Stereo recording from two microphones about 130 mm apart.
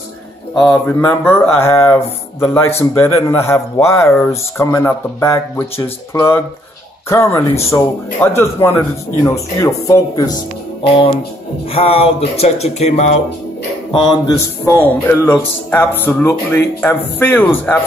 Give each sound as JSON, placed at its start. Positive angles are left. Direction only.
{"t": 0.6, "sound": "speech", "side_deg": 10}
{"t": 11.7, "sound": "speech", "side_deg": 50}
{"t": 13.9, "sound": "speech", "side_deg": 35}
{"t": 14.3, "sound": "speech", "side_deg": 20}